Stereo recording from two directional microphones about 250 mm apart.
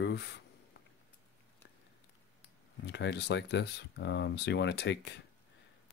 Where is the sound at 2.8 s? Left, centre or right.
Left.